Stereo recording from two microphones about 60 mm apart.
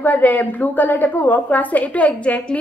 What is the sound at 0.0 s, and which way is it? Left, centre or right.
A woman's voice, left.